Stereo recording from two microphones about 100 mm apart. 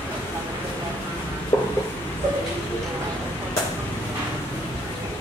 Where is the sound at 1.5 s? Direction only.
25° left (ahead or behind).